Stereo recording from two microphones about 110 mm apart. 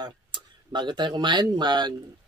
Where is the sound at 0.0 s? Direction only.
40° right (ahead or behind).